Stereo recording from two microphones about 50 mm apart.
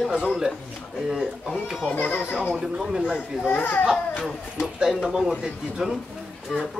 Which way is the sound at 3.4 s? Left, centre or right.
Left.